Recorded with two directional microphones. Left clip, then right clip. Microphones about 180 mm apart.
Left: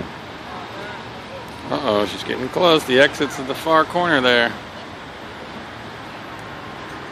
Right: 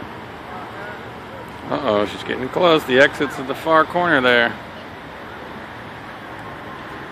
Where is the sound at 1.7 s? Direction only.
5° left (ahead or behind).